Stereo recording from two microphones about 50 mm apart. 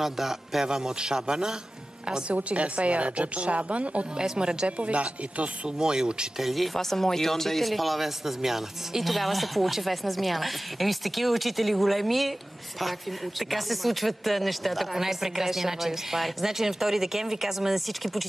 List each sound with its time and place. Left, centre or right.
0.0 s a man's voice: centre; by 5.5 s right
5.8 s a man's voice: centre
6.4 s speech: centre
13.5 s speech: centre